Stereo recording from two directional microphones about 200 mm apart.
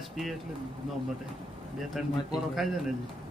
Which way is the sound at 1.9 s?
Centre (ahead or behind).